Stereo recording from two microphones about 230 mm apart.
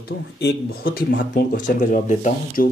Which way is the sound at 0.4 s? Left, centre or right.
Left.